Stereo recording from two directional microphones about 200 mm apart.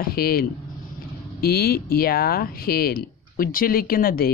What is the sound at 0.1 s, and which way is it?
Speech, 50° left (ahead or behind).